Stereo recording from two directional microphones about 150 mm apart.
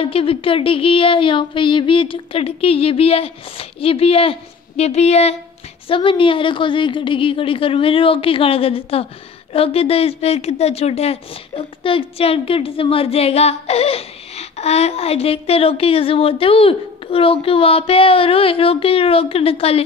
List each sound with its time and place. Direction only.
0.0 s a woman's voice: 40° left (ahead or behind)